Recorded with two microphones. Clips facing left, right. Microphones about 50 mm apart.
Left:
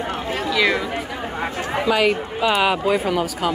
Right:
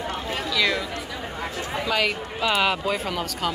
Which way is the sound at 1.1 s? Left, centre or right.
Left.